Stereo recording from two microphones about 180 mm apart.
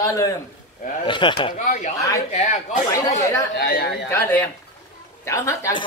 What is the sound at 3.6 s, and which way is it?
Speech, 65° left (ahead or behind).